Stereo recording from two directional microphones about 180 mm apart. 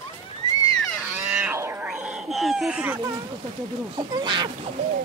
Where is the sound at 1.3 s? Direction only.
10° right (ahead or behind).